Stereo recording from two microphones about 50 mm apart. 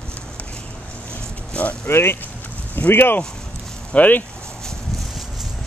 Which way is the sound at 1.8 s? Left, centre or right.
Left.